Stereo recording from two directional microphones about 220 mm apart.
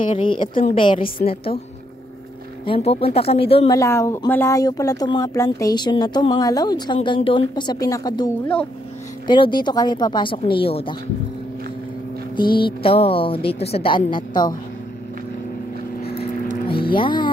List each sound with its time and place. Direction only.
0.0 s a woman's voice: 25° left (ahead or behind)
2.6 s a woman's voice: 25° left (ahead or behind)
3.7 s speech: 15° left (ahead or behind)
9.3 s a woman's voice: 20° left (ahead or behind)
12.4 s a woman's voice: 20° left (ahead or behind)
16.9 s a woman's voice: 20° left (ahead or behind)